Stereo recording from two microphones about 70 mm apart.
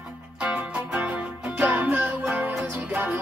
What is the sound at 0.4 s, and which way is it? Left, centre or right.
Music, centre.